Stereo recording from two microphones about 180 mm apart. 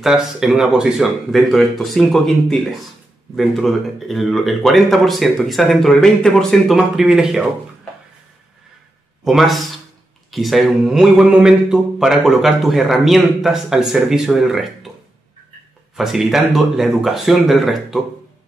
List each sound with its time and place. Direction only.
0.0 s speech: centre (ahead or behind)
9.2 s speech: centre (ahead or behind)
16.0 s speech: centre (ahead or behind)